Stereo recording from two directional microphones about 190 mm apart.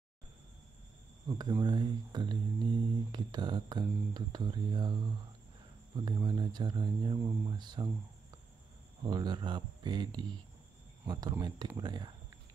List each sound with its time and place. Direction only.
1.2 s speech: 20° right (ahead or behind)
9.0 s speech: 25° right (ahead or behind)